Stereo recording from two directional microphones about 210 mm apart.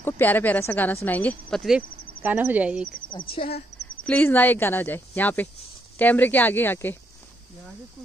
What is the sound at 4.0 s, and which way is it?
Speech, 10° left (ahead or behind).